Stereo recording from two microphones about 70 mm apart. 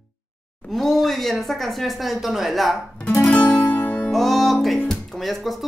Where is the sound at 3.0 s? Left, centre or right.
Left.